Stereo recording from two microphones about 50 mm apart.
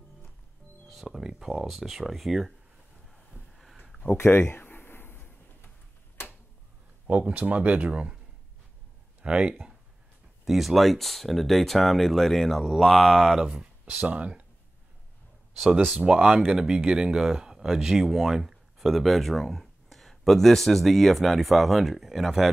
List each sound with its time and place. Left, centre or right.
1.0 s speech: centre
4.2 s a sound: left
7.1 s speech: right
9.2 s speech: right
10.4 s speech: centre
13.4 s speech: centre
13.9 s speech: right
16.0 s speech: centre